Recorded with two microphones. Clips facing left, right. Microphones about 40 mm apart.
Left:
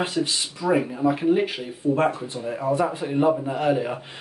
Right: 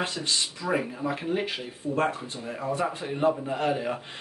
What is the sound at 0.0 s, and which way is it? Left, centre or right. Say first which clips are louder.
Speech: left 4 dB; centre.